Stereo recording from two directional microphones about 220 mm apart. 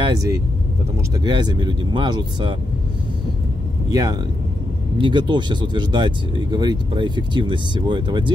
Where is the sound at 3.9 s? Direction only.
15° right (ahead or behind).